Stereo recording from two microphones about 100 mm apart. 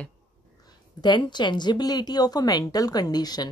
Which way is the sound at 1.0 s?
45° left (ahead or behind).